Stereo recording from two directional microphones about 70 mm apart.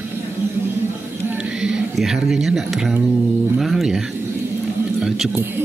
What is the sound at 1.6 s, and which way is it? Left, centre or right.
Speech, centre.